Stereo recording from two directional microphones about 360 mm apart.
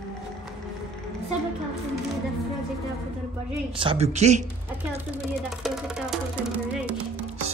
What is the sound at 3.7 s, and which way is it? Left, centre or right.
Speech, centre.